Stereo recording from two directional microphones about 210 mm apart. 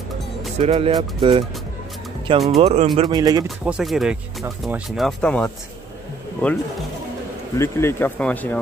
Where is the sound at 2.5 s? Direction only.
30° right (ahead or behind).